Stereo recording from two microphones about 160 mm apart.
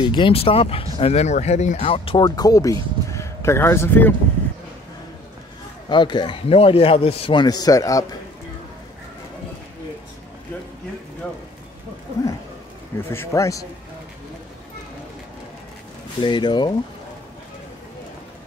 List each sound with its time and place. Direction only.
0.0 s speech: 30° left (ahead or behind)
2.2 s speech: 25° left (ahead or behind)
5.9 s a man's voice: 30° left (ahead or behind)
13.1 s a man's voice: 15° left (ahead or behind)
16.2 s a man's voice: 30° left (ahead or behind)